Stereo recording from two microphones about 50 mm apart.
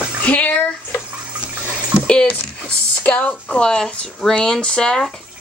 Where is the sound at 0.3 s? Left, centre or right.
Left.